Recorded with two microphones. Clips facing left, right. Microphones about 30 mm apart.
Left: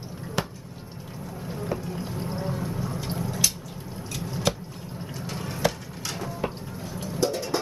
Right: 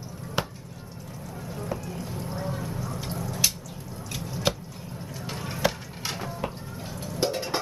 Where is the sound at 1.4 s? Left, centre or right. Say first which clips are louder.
Left 2 dB; centre.